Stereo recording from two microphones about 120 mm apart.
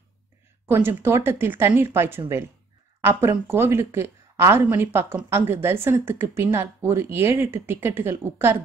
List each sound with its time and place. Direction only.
0.7 s a woman's voice: 20° right (ahead or behind)